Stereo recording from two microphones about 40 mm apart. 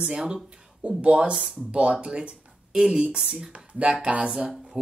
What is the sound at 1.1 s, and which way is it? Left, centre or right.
Speech, centre.